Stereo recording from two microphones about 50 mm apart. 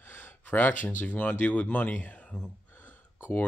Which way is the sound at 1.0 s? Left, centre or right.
Left.